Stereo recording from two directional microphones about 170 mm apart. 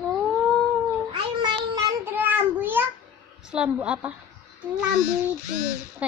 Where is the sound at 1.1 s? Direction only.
25° right (ahead or behind).